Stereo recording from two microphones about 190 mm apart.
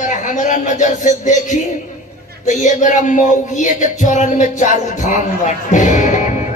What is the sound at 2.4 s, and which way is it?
Music, 40° left (ahead or behind).